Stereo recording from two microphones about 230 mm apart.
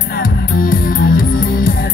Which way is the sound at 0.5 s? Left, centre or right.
Left.